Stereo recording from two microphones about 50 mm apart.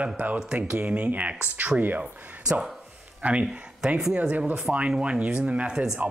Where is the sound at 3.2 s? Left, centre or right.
Right.